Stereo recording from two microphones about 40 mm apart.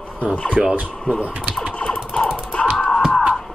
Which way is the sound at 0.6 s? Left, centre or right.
Centre.